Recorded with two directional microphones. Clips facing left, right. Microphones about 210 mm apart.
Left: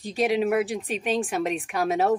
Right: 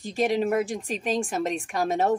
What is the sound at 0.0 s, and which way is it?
Speech, centre (ahead or behind).